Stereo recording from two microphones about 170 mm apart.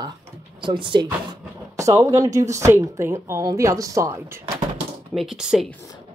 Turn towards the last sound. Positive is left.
turn(degrees=0)  # may be behind; listen again after turning